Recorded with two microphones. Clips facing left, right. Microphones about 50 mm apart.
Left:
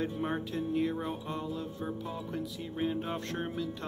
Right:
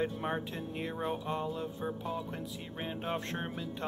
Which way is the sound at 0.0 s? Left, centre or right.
Centre.